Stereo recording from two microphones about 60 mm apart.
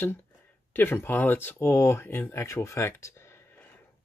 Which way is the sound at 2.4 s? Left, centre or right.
Left.